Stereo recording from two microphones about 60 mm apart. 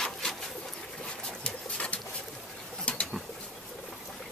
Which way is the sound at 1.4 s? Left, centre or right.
Left.